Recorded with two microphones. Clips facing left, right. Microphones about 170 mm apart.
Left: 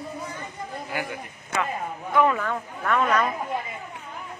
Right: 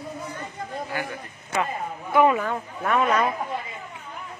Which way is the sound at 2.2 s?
15° right (ahead or behind).